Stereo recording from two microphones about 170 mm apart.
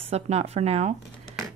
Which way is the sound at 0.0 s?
35° right (ahead or behind).